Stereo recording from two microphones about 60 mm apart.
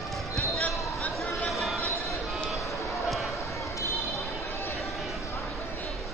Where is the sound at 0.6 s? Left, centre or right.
Left.